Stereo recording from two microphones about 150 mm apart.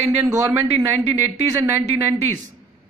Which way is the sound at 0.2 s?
15° right (ahead or behind).